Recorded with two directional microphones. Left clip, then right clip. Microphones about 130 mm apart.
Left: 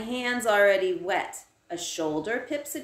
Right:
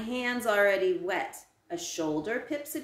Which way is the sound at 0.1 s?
15° left (ahead or behind).